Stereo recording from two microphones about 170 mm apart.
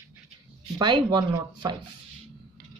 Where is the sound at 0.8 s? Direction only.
25° right (ahead or behind).